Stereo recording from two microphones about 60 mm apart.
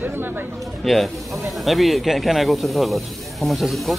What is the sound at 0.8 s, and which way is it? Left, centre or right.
Speech, centre.